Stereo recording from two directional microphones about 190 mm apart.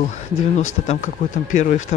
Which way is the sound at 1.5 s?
45° left (ahead or behind).